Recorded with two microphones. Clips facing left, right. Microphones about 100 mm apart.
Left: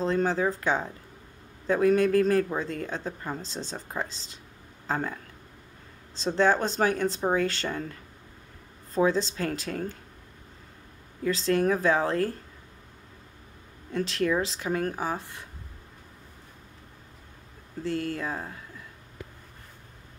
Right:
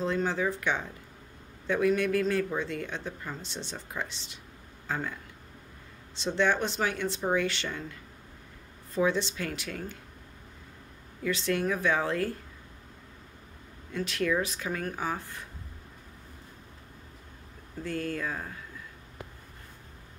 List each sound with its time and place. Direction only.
0.0 s speech: 35° left (ahead or behind)
8.9 s speech: 35° left (ahead or behind)
11.2 s speech: 35° left (ahead or behind)
13.9 s speech: 30° left (ahead or behind)
17.8 s speech: 25° left (ahead or behind)